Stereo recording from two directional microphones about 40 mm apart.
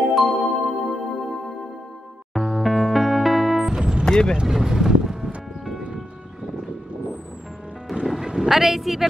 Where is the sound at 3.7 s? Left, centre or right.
Right.